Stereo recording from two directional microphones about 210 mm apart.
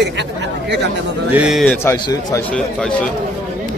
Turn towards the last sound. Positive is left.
turn(degrees=5)  # may be behind; listen again after turning